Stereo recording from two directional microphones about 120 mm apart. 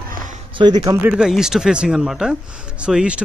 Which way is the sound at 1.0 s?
5° right (ahead or behind).